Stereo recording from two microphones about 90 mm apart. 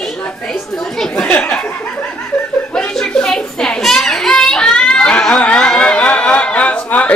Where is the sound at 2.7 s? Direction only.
5° left (ahead or behind).